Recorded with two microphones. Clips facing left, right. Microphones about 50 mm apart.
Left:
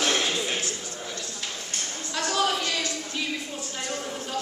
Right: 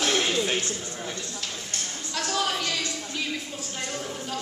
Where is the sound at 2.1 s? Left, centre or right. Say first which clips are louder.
Left 2 dB; centre.